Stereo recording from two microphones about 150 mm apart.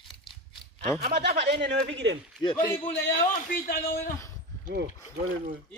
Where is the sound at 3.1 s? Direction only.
65° left (ahead or behind).